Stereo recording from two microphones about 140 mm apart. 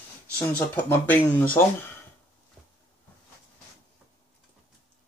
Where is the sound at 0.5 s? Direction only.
15° left (ahead or behind).